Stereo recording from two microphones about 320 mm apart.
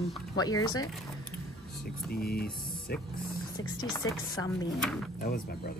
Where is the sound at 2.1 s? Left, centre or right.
Left.